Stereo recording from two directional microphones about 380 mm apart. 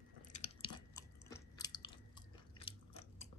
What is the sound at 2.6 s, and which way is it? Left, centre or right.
Biting, centre.